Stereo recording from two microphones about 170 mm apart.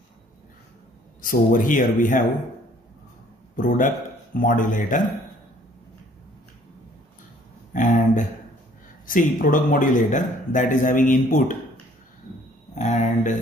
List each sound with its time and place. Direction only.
1.2 s a man's voice: 55° left (ahead or behind)
3.5 s speech: 50° left (ahead or behind)
7.7 s a sound: 50° left (ahead or behind)
9.0 s a man's voice: 50° left (ahead or behind)
12.7 s a man's voice: 45° left (ahead or behind)